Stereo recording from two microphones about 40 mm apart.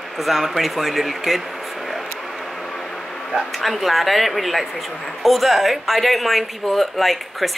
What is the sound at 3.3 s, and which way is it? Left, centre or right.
Speech, centre.